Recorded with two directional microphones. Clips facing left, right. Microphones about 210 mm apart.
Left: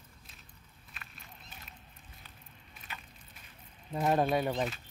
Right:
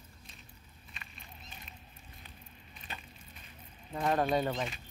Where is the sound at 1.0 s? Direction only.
5° left (ahead or behind).